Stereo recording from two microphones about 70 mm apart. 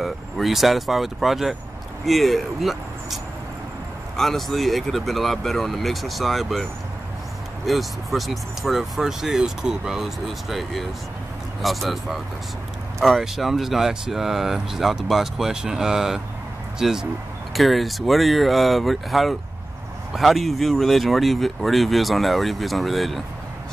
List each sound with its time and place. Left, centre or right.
0.0 s speech: centre
4.2 s speech: centre